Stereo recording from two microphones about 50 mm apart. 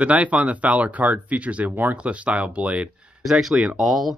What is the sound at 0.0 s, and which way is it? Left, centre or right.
Speech, right.